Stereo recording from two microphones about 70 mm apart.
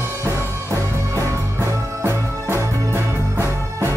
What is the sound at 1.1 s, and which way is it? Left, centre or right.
Music, right.